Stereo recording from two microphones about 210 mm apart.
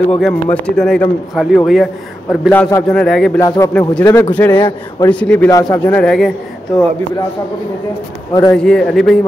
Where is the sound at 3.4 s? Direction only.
15° left (ahead or behind).